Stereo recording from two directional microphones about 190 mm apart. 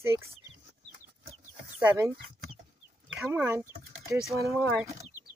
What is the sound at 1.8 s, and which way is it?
Speech, 10° right (ahead or behind).